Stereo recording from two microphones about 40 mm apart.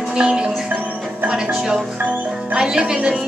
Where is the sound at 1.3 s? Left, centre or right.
Centre.